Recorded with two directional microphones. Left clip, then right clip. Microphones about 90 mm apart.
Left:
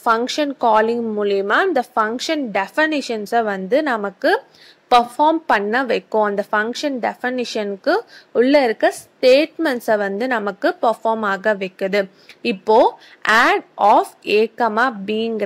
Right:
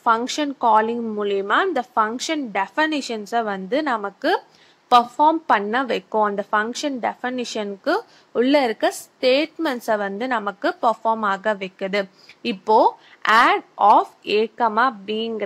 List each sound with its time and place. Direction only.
0.0 s a woman's voice: 30° left (ahead or behind)
6.7 s a woman's voice: 20° left (ahead or behind)